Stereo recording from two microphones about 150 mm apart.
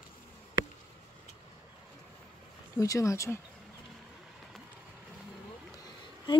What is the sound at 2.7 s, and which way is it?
Speech, 20° left (ahead or behind).